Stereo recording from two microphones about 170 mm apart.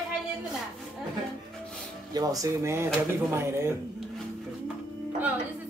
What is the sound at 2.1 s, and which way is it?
Speech, 20° right (ahead or behind).